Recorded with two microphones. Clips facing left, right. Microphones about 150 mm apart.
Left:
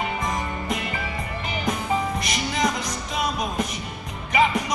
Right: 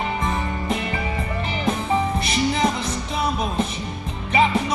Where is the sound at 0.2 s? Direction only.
30° right (ahead or behind).